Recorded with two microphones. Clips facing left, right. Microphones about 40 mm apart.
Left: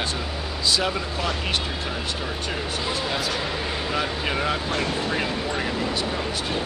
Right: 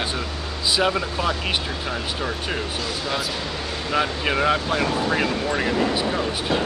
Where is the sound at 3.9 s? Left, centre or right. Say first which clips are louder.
Right 6 dB; centre.